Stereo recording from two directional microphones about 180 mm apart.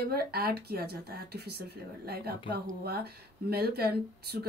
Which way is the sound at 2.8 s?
60° right (ahead or behind).